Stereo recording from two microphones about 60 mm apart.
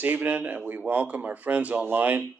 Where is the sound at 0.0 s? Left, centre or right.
Right.